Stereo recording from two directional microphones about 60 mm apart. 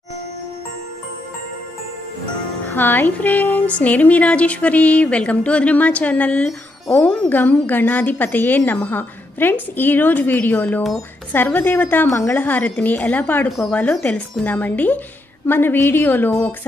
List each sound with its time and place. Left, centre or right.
2.7 s a woman's voice: left